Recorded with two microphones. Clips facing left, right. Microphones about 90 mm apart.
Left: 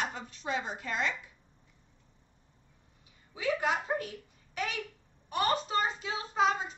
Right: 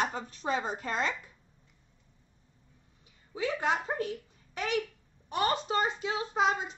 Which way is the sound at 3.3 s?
30° right (ahead or behind).